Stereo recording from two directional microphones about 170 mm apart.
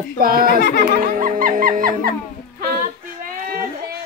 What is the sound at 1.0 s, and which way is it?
Speech, 55° right (ahead or behind).